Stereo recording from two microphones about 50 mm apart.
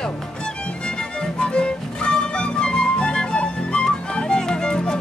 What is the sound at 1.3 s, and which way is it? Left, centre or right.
Music, centre.